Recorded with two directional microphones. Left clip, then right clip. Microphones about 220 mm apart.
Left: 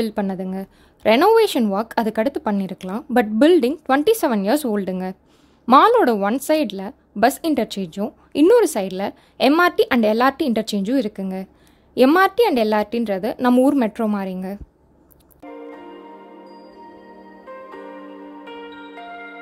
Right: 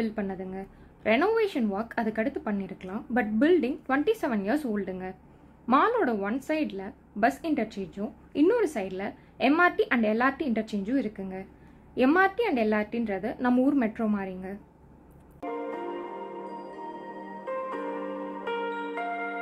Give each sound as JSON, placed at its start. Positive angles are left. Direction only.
{"t": 0.0, "sound": "speech", "side_deg": 50}